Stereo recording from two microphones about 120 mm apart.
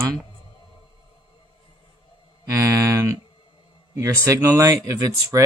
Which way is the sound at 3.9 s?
25° right (ahead or behind).